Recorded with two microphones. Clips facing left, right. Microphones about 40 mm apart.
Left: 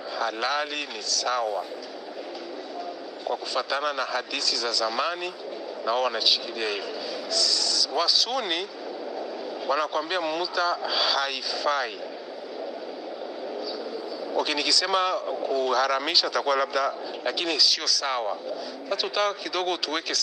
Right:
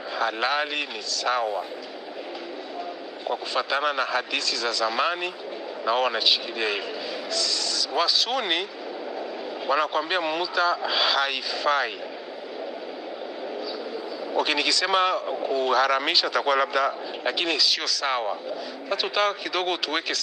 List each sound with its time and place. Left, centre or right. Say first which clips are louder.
0.1 s a man's voice: right 2 dB; right
3.3 s speech: right 1 dB; right
9.7 s speech: right 2 dB; right
14.3 s speech: right 2 dB; right